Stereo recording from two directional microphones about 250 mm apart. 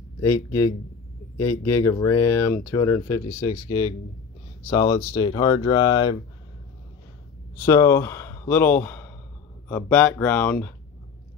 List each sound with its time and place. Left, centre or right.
0.2 s speech: centre
7.5 s speech: centre